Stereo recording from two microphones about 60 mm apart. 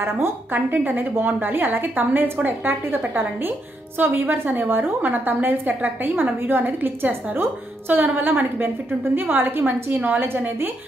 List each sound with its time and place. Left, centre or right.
0.0 s a woman's voice: right